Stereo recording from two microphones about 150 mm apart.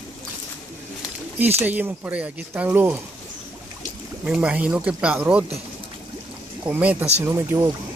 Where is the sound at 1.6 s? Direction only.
10° right (ahead or behind).